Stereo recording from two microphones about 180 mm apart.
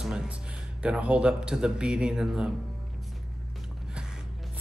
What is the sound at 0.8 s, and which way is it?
Speech, 5° right (ahead or behind).